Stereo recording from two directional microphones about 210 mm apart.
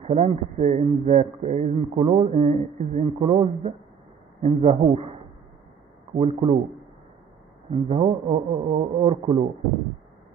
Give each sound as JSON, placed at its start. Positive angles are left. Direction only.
{"t": 0.0, "sound": "a man's voice", "side_deg": -30}
{"t": 6.1, "sound": "a man's voice", "side_deg": -30}
{"t": 7.7, "sound": "a man's voice", "side_deg": -30}